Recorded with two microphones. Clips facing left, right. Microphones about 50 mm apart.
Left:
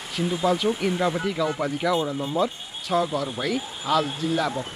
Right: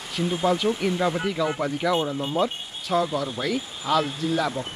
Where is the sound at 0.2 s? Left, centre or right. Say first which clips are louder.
Even; centre.